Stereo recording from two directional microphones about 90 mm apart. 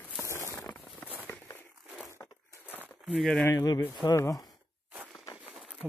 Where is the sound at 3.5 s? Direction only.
45° left (ahead or behind).